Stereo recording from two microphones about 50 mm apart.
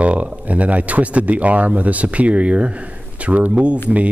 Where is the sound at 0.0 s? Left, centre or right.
Right.